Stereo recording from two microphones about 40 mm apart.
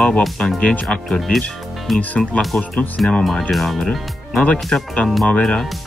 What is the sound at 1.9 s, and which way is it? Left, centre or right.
Speech, centre.